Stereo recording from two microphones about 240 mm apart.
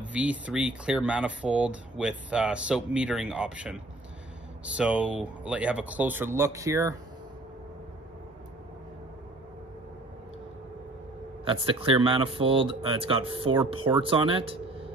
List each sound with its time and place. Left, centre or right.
0.0 s speech: centre
11.4 s speech: right